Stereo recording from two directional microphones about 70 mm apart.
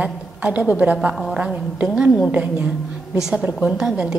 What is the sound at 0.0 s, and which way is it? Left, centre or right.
A woman's voice, right.